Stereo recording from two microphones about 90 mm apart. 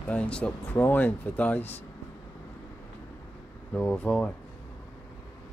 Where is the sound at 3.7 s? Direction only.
15° left (ahead or behind).